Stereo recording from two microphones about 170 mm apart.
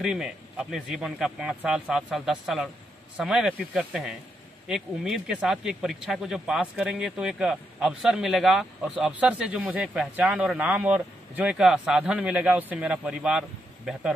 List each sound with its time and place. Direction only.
0.0 s speech: 5° right (ahead or behind)